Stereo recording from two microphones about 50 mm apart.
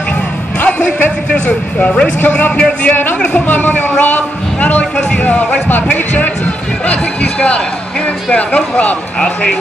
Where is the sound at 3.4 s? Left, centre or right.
Left.